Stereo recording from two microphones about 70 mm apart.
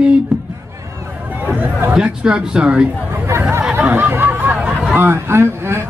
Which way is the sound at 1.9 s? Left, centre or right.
Centre.